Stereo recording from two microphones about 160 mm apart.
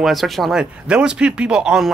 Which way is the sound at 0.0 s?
Centre (ahead or behind).